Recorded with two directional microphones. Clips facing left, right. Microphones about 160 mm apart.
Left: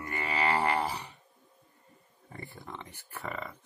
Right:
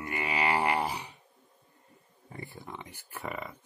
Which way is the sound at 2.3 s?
15° right (ahead or behind).